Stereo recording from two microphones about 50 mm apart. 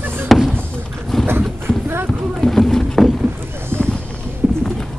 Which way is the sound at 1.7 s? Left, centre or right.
Centre.